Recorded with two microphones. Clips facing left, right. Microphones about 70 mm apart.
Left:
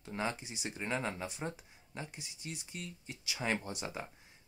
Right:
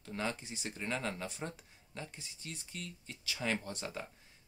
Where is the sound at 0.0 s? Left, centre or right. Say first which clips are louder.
Left 1 dB; centre.